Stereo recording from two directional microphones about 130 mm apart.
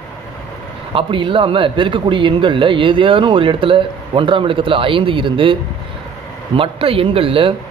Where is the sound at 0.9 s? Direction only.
40° right (ahead or behind).